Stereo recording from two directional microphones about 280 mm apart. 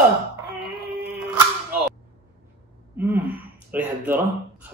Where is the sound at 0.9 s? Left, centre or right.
Centre.